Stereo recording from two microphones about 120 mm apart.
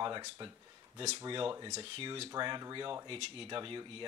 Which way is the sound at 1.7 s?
55° right (ahead or behind).